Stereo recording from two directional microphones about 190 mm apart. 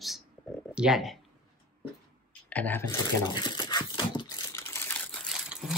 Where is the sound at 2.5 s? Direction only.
10° left (ahead or behind).